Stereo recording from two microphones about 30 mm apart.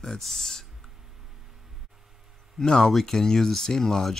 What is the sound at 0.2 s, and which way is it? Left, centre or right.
Speech, centre.